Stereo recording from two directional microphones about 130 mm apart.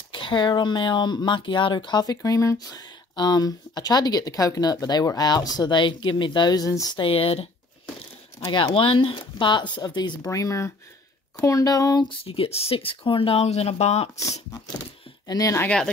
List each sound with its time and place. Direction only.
0.1 s speech: 40° left (ahead or behind)
7.0 s speech: 45° left (ahead or behind)
8.5 s speech: 35° left (ahead or behind)
12.1 s speech: 45° left (ahead or behind)
15.2 s speech: 25° left (ahead or behind)
15.6 s speech: 5° left (ahead or behind)